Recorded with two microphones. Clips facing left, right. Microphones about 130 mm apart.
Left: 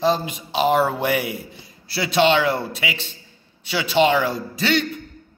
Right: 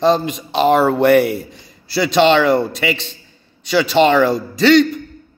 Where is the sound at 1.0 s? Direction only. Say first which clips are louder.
Right 10 dB; 65° right (ahead or behind).